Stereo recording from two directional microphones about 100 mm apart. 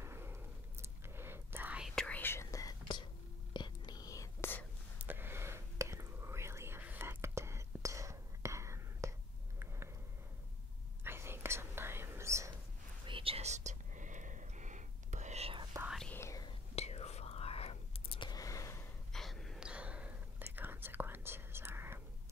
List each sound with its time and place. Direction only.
0.0 s a sound: 25° right (ahead or behind)
0.8 s whispering: 25° right (ahead or behind)
2.0 s whispering: 15° left (ahead or behind)
2.5 s whispering: 35° left (ahead or behind)
4.9 s whispering: 20° right (ahead or behind)
11.1 s whispering: 25° right (ahead or behind)
13.0 s whispering: 65° right (ahead or behind); by 13.6 s 80° right
15.3 s whispering: 80° right
16.1 s whispering: 25° left (ahead or behind)
16.7 s whispering: 90° left; by 18.3 s 65° left (ahead or behind)
18.3 s a sound: 35° left (ahead or behind)
19.1 s gasp: 5° left (ahead or behind)
19.6 s whispering: 10° right (ahead or behind)